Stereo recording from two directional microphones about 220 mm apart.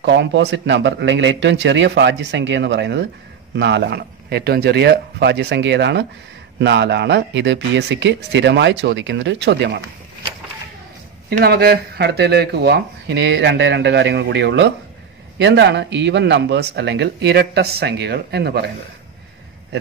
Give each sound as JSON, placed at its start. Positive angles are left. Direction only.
{"t": 0.0, "sound": "speech", "side_deg": -55}
{"t": 11.2, "sound": "speech", "side_deg": -45}